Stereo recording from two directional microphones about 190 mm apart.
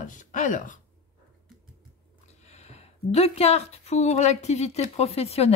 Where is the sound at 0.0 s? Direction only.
40° left (ahead or behind).